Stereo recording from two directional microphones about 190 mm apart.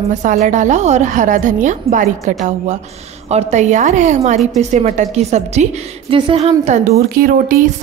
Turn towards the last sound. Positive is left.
turn(degrees=-45)  # may be behind; listen again after turning